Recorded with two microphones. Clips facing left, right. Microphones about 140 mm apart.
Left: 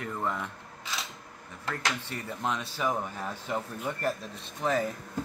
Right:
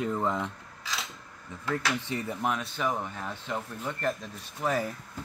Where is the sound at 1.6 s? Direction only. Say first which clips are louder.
Right 3 dB; 15° right (ahead or behind).